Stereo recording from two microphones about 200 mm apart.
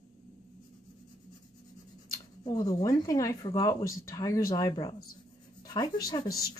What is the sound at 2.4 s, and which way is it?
Speech, 20° left (ahead or behind).